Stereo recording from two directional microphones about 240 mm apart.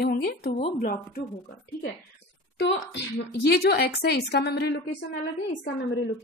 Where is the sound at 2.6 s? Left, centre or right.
Left.